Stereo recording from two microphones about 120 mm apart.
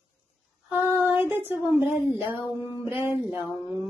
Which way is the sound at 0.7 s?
20° right (ahead or behind).